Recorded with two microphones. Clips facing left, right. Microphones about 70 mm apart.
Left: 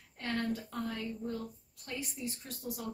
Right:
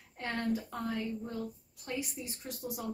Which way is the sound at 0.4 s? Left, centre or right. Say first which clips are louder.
Right 3 dB; centre.